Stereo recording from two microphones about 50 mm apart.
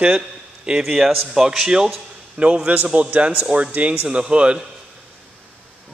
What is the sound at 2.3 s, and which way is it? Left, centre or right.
A man's voice, right.